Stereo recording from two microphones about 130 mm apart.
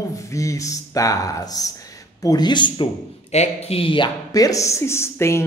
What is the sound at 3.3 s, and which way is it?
Speech, 55° left (ahead or behind).